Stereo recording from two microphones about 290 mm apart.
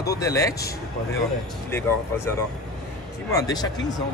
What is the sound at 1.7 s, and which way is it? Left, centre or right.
Speech, centre.